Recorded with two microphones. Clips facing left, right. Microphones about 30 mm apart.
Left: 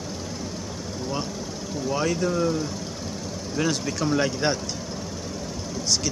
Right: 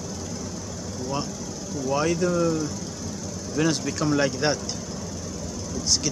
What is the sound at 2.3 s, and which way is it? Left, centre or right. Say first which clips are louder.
Speech: right 1 dB; left.